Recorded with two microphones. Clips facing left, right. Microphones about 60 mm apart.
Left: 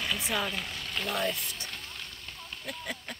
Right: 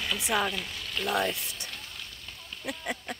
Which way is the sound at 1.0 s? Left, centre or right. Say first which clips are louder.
Right 3 dB; centre.